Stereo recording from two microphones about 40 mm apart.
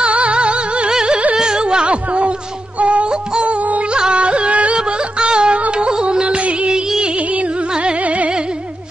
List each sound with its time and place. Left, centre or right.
0.0 s music: right
0.9 s carnatic music: right
1.3 s a sound: centre
2.8 s music: right
4.7 s music: right
6.2 s music: right
6.7 s music: centre
7.2 s music: right